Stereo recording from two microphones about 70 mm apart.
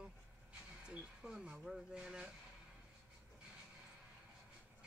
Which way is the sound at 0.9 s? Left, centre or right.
Centre.